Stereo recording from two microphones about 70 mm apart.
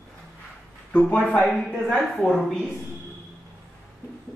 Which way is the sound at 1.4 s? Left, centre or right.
Centre.